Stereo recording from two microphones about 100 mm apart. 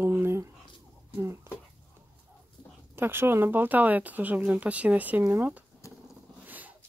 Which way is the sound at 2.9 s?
25° right (ahead or behind).